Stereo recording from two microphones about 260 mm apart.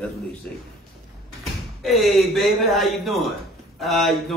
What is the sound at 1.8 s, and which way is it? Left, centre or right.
Speech, centre.